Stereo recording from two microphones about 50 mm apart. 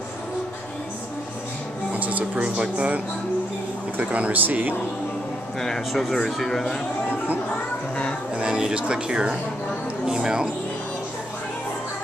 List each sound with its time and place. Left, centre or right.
1.9 s speech: right
4.0 s speech: right
5.6 s speech: centre
8.4 s speech: centre